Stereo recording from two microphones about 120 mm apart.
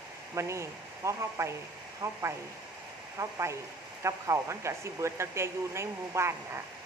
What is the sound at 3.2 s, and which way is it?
Speech, 25° right (ahead or behind).